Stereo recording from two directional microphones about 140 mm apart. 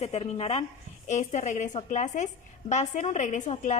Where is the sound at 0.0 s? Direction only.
50° left (ahead or behind).